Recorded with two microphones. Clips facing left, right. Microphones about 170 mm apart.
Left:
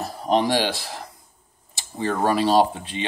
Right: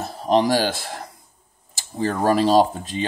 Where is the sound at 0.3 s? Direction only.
40° right (ahead or behind).